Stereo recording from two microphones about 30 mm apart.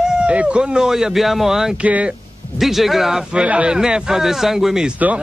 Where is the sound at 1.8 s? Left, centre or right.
Right.